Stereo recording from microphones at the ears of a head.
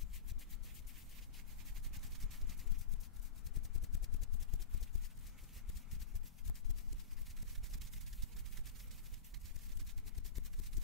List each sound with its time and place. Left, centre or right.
3.5 s vehicle: left